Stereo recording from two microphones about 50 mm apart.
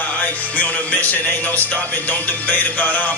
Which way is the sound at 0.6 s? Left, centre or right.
Left.